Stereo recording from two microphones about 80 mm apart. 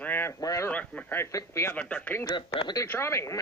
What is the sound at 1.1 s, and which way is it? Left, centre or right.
Speech, left.